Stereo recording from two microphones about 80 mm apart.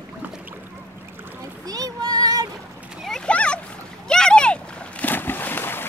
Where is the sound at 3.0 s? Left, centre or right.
Centre.